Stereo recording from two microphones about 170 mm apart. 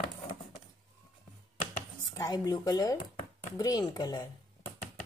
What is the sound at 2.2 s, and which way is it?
Speech, 20° left (ahead or behind).